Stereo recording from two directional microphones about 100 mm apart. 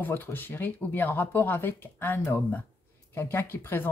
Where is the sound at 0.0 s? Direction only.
20° left (ahead or behind).